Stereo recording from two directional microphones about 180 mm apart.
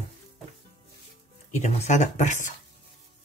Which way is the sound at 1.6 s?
40° left (ahead or behind).